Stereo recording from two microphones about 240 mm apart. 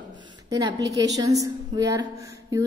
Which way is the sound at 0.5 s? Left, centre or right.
Centre.